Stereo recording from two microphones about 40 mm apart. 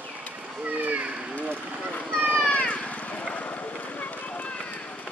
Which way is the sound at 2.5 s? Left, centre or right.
Left.